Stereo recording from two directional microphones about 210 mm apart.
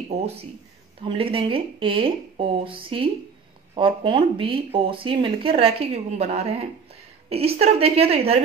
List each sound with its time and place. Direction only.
1.0 s speech: 25° right (ahead or behind)